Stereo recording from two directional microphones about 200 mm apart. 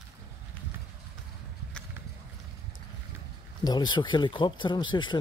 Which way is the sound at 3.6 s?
20° left (ahead or behind).